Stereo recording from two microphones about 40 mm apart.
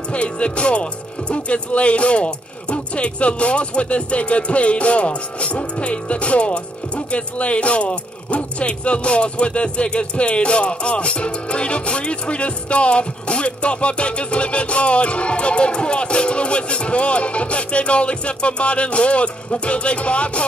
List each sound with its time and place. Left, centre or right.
0.1 s speech: left